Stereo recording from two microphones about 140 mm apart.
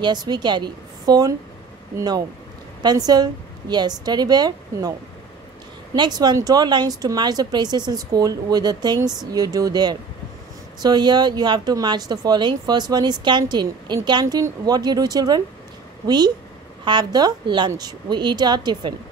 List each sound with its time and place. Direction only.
0.0 s speech: 30° right (ahead or behind)
5.9 s speech: 30° right (ahead or behind)
16.8 s speech: 30° right (ahead or behind)